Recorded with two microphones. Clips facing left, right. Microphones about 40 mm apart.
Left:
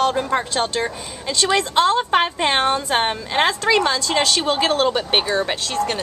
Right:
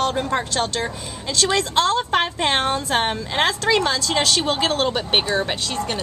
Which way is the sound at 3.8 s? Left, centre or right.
Left.